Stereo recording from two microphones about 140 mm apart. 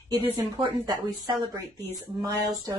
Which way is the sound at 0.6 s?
30° right (ahead or behind).